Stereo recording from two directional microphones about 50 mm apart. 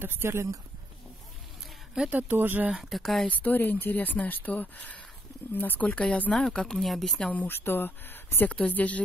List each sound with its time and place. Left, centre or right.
0.0 s speech: right
2.0 s speech: right
3.0 s a woman's voice: centre
3.3 s speech: left
6.3 s speech: centre
6.8 s a woman's voice: centre
7.2 s speech: left
7.4 s speech: left
8.6 s speech: left